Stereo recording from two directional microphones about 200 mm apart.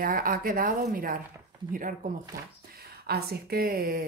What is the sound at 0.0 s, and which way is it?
A woman's voice, 45° right (ahead or behind).